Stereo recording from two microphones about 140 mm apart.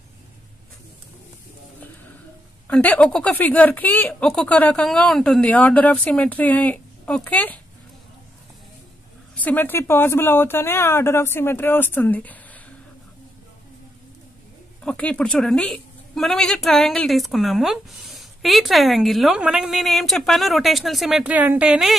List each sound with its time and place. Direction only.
2.7 s speech: 10° left (ahead or behind)
9.3 s speech: 10° left (ahead or behind)
14.8 s a woman's voice: 10° left (ahead or behind)
21.2 s a woman's voice: 10° right (ahead or behind)